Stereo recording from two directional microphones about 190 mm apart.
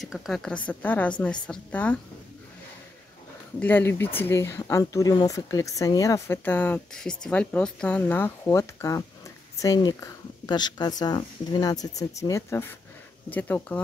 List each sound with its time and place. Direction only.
0.0 s speech: centre (ahead or behind)
3.5 s speech: 10° left (ahead or behind)